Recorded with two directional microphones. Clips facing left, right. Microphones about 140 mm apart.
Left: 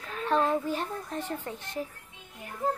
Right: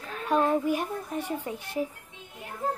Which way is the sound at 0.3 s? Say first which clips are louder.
Right 2 dB; 10° right (ahead or behind).